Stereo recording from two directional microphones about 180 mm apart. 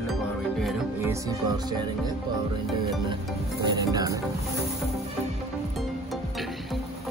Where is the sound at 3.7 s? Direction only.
20° right (ahead or behind).